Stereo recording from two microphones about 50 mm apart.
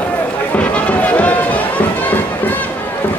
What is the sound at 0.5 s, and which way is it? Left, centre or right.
Music, left.